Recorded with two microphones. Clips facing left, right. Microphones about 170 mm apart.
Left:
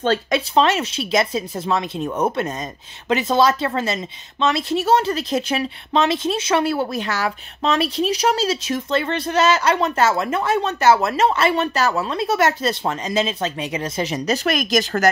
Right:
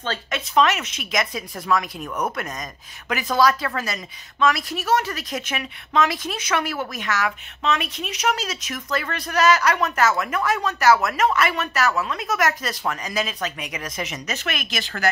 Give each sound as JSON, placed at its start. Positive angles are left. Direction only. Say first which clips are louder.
{"t": 0.0, "sound": "speech", "louder": "left 9 dB", "side_deg": 40}
{"t": 0.6, "sound": "speech", "louder": "left 1 dB", "side_deg": 30}